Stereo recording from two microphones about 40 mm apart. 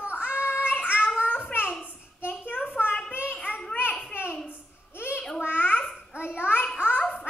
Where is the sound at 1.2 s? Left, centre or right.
Left.